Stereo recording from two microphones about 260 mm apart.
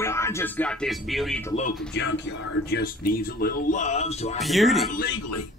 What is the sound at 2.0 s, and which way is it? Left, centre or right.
Speech, left.